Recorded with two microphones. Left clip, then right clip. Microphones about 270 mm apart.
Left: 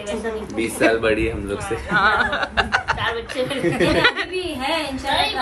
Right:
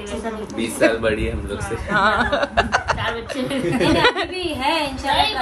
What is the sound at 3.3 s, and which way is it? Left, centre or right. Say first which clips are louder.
Speech: left 1 dB; centre.